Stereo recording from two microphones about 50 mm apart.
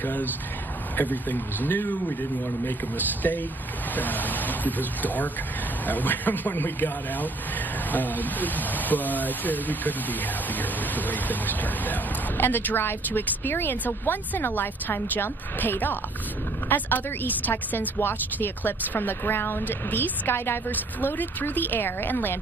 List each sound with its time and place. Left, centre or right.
0.0 s a woman's voice: left